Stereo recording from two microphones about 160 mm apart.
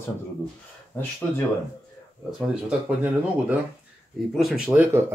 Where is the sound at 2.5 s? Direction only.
5° right (ahead or behind).